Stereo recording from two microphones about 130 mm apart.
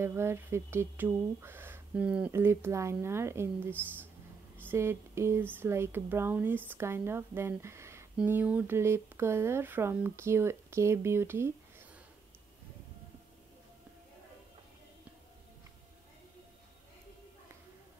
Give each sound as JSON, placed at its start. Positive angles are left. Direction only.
{"t": 0.0, "sound": "speech", "side_deg": -20}